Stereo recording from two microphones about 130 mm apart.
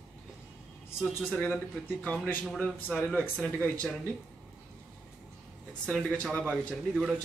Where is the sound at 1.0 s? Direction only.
5° right (ahead or behind).